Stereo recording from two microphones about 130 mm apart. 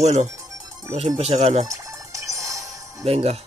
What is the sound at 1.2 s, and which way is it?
Speech, 50° right (ahead or behind).